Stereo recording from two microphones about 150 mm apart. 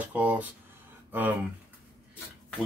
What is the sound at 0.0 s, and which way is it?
Speech, 10° right (ahead or behind).